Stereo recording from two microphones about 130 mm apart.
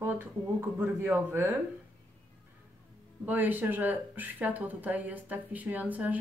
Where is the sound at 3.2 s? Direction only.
15° right (ahead or behind).